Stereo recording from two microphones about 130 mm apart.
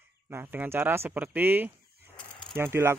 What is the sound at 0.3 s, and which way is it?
Speech, 20° right (ahead or behind).